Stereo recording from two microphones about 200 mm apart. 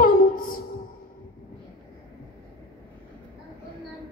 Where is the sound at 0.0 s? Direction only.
45° left (ahead or behind).